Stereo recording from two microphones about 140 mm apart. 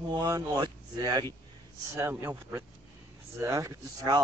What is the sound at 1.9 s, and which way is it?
A man's voice, 20° right (ahead or behind).